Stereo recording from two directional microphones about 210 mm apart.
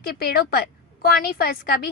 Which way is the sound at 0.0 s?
45° left (ahead or behind).